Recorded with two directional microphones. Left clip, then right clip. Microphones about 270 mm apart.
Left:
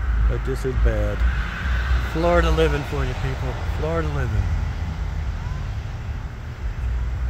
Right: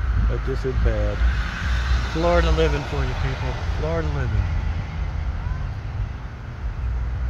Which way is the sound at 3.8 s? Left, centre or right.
Centre.